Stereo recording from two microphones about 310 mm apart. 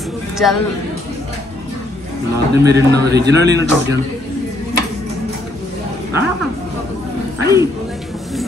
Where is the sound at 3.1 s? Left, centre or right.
Right.